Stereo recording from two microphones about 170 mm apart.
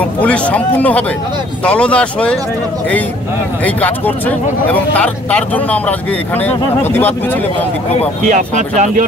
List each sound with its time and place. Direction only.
0.2 s speech: 10° left (ahead or behind)
3.6 s speech: 10° left (ahead or behind)
8.3 s speech: 45° right (ahead or behind)